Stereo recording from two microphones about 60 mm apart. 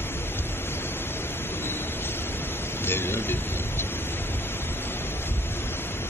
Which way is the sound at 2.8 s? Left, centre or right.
Left.